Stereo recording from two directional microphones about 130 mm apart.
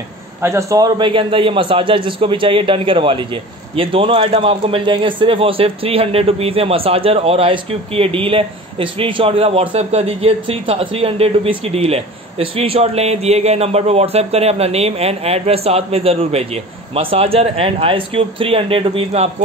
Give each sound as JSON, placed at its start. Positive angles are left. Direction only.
{"t": 0.4, "sound": "a man's voice", "side_deg": -20}